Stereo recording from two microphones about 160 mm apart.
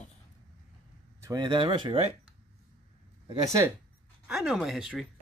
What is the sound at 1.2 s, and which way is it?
Speech, 25° right (ahead or behind).